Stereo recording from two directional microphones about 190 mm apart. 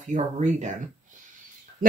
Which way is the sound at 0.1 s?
40° right (ahead or behind).